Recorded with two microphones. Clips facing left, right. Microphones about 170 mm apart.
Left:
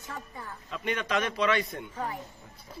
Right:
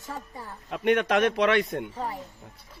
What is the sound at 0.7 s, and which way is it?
Speech, 65° right (ahead or behind).